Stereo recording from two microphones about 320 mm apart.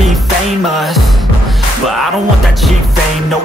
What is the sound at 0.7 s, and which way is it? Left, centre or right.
Music, centre.